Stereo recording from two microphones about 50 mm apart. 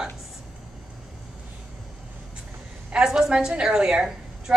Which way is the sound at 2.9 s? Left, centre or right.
Centre.